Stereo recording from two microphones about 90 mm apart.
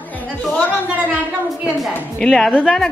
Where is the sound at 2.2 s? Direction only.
5° left (ahead or behind).